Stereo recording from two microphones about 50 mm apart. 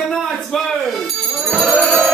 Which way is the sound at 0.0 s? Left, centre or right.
Centre.